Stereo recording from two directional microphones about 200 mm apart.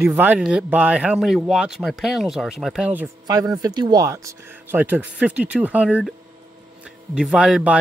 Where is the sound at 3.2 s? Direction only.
15° right (ahead or behind).